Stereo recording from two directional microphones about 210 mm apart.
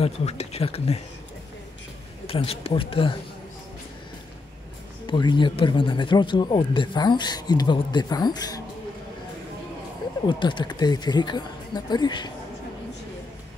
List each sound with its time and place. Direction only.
0.0 s speech: 30° left (ahead or behind)
2.2 s speech: 25° left (ahead or behind)
5.0 s speech: 20° left (ahead or behind)
10.2 s speech: 20° left (ahead or behind)